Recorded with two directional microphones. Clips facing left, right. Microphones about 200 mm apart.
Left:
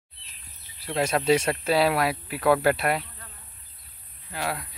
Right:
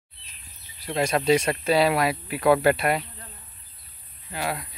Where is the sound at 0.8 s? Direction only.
5° left (ahead or behind).